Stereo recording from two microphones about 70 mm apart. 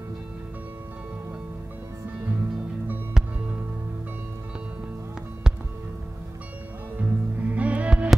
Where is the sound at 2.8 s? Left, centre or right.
Right; by 5.6 s centre.